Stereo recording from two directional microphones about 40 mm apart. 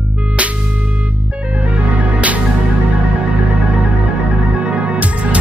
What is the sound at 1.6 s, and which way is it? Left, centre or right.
Music, right.